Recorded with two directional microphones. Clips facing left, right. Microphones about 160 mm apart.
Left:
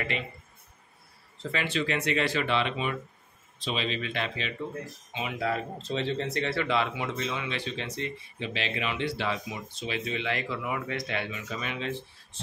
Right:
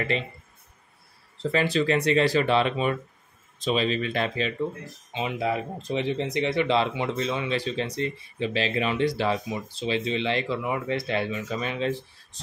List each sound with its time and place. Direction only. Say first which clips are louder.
1.4 s speech: right 7 dB; 35° right (ahead or behind)
5.5 s speech: right 3 dB; 15° right (ahead or behind)
6.7 s speech: right 4 dB; 30° right (ahead or behind)